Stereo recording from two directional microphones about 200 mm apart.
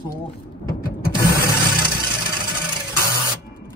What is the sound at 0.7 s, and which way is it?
Mechanisms, 45° left (ahead or behind).